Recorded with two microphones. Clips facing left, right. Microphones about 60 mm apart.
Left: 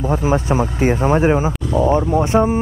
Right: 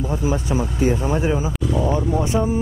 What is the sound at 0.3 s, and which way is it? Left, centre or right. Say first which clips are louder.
Speech: left 5 dB; left.